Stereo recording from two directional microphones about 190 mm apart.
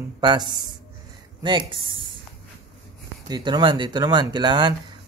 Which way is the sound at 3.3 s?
25° right (ahead or behind).